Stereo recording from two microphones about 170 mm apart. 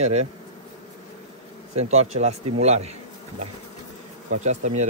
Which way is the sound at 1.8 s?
40° right (ahead or behind).